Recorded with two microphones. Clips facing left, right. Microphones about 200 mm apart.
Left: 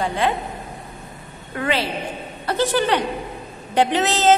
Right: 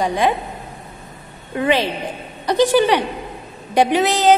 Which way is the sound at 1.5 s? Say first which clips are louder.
Right 5 dB; 15° right (ahead or behind).